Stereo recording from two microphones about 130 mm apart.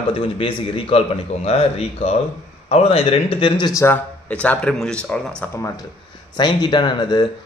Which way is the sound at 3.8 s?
10° left (ahead or behind).